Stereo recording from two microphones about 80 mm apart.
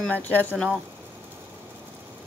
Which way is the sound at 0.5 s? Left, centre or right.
Centre.